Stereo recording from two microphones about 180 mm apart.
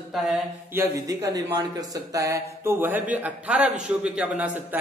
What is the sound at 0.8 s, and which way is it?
A man's voice, 20° right (ahead or behind).